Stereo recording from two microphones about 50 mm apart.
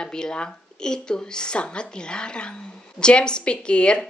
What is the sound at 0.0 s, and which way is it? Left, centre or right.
A woman's voice, centre.